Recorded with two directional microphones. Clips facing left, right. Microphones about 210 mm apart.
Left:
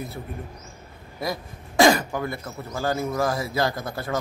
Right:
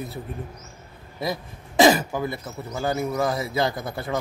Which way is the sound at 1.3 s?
20° right (ahead or behind).